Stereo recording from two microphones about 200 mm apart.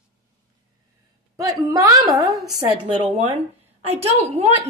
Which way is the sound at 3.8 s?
30° right (ahead or behind).